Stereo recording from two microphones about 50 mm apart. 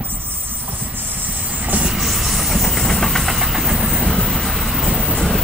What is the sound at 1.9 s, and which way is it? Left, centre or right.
Engine, centre.